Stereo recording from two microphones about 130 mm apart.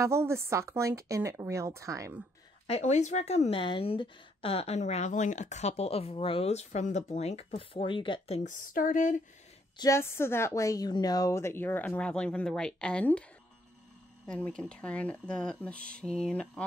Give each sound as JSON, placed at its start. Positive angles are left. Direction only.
{"t": 0.0, "sound": "a woman's voice", "side_deg": -20}
{"t": 2.6, "sound": "speech", "side_deg": 60}
{"t": 8.5, "sound": "a sound", "side_deg": 90}
{"t": 9.8, "sound": "a woman's voice", "side_deg": 20}
{"t": 14.2, "sound": "speech", "side_deg": 5}